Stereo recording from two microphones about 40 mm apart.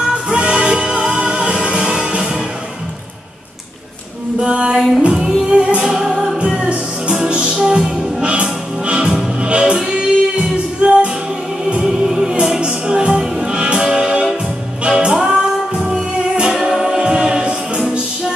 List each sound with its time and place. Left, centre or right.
0.1 s music: right
4.4 s music: right
5.8 s music: centre
6.4 s music: centre
11.8 s music: centre
16.6 s choir: centre